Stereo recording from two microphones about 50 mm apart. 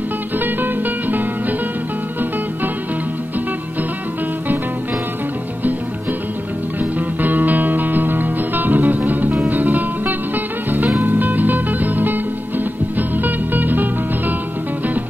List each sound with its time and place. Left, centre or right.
0.4 s music: right
6.8 s music: right